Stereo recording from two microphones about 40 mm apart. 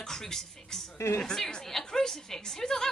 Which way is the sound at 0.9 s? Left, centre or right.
Left.